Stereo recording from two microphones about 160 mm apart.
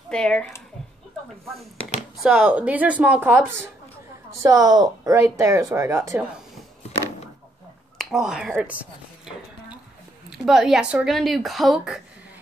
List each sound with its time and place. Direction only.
0.1 s speech: 5° left (ahead or behind)
2.1 s speech: 5° right (ahead or behind)
4.4 s speech: 25° right (ahead or behind)
8.0 s speech: centre (ahead or behind)
10.3 s speech: centre (ahead or behind)